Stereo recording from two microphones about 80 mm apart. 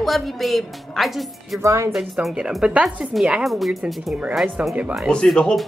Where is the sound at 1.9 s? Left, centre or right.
Centre.